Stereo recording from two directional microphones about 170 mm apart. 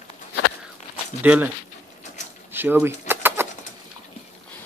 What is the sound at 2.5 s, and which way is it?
Speech, 15° right (ahead or behind).